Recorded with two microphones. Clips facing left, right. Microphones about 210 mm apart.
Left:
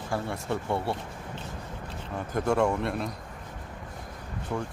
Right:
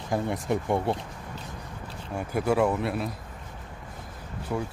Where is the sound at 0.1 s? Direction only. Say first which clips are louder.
Right 4 dB; 15° right (ahead or behind).